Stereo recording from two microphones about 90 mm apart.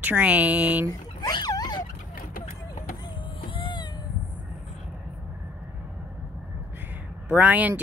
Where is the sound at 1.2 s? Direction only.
50° left (ahead or behind).